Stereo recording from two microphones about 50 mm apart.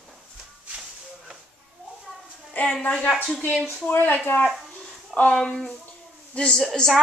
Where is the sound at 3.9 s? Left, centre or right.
Left.